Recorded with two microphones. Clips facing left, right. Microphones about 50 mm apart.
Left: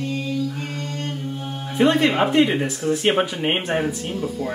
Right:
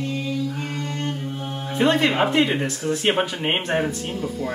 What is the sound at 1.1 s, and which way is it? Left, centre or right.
Music, centre.